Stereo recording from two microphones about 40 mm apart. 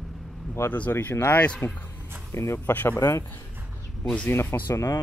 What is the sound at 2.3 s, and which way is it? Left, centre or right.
Speech, left.